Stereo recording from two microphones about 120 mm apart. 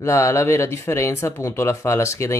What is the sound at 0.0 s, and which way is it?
Speech, 25° left (ahead or behind).